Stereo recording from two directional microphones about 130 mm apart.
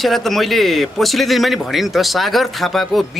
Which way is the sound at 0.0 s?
Centre (ahead or behind).